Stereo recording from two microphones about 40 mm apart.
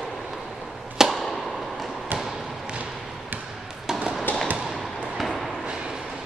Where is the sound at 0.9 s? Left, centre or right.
Centre.